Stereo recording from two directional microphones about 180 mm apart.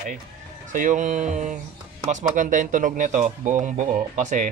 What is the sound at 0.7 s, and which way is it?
A man's voice, 45° right (ahead or behind).